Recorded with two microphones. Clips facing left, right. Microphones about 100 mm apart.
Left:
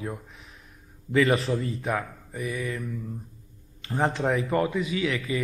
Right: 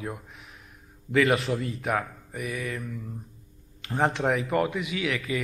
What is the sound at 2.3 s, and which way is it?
Mantra, 25° left (ahead or behind).